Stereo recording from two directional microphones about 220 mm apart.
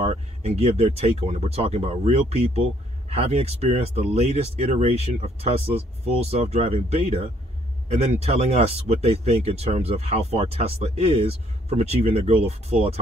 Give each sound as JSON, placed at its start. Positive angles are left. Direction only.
{"t": 0.0, "sound": "speech", "side_deg": -30}